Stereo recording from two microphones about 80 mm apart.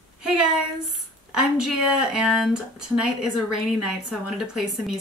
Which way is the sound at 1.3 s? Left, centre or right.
Centre.